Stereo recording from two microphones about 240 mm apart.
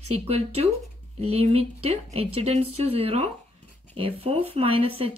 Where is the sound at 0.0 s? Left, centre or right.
Right.